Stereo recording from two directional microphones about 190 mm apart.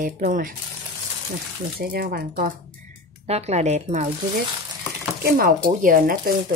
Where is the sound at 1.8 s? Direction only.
55° right (ahead or behind).